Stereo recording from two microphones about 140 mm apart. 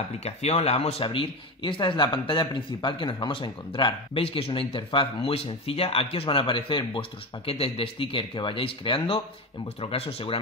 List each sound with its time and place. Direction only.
0.2 s speech: 50° left (ahead or behind)